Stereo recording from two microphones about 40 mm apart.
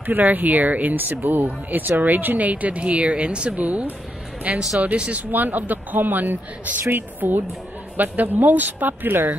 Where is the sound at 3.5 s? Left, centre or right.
Right.